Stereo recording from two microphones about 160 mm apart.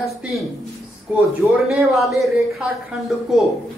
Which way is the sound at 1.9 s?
Centre (ahead or behind).